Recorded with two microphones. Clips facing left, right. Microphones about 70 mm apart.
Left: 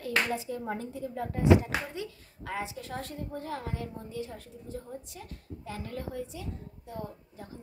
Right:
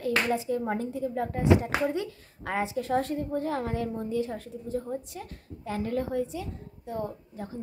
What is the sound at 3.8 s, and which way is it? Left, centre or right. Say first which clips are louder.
A woman's voice: right 9 dB; right.